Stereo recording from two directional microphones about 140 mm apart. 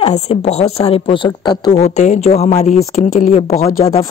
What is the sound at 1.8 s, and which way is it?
Speech, 50° left (ahead or behind).